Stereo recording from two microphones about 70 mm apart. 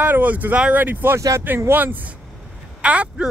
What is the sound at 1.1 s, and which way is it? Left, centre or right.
Speech, right.